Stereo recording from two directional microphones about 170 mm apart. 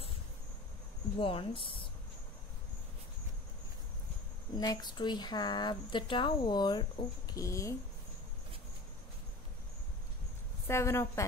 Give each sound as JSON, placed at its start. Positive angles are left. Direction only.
{"t": 1.2, "sound": "speech", "side_deg": 30}
{"t": 4.6, "sound": "speech", "side_deg": 25}
{"t": 10.7, "sound": "a woman's voice", "side_deg": 15}